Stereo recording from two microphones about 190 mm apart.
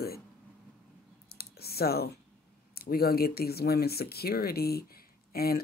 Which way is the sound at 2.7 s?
55° left (ahead or behind).